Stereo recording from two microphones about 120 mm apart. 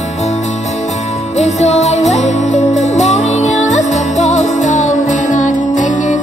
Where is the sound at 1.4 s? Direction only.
70° left (ahead or behind).